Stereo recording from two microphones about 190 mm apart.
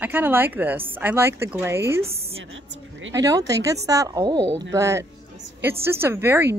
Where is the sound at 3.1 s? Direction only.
15° right (ahead or behind).